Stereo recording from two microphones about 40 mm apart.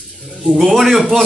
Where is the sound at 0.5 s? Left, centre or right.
Centre.